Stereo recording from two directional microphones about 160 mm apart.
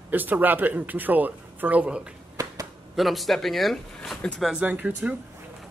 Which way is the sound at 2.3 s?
20° right (ahead or behind).